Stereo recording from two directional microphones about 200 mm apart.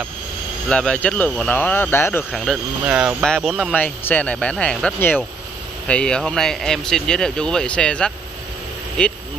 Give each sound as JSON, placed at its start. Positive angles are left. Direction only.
{"t": 0.7, "sound": "speech", "side_deg": 5}
{"t": 2.3, "sound": "speech", "side_deg": 0}
{"t": 3.7, "sound": "speech", "side_deg": 10}